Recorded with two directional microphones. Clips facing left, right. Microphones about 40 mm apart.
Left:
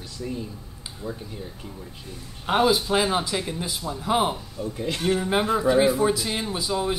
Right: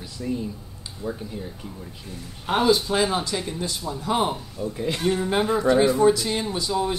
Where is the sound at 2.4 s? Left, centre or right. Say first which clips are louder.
Even; centre.